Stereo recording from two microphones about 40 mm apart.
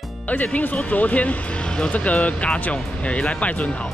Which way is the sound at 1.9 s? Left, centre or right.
Left.